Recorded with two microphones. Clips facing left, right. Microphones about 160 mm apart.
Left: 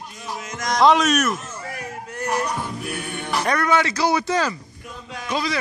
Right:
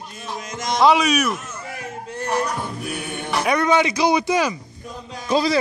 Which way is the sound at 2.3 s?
Centre (ahead or behind).